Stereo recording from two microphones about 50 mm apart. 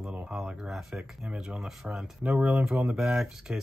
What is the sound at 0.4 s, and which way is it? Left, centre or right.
Speech, centre.